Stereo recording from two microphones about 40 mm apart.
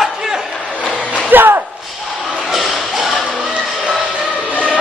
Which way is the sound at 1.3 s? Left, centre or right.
Right.